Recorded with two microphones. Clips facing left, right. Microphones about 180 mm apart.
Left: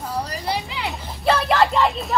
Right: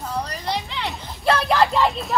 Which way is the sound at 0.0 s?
5° left (ahead or behind).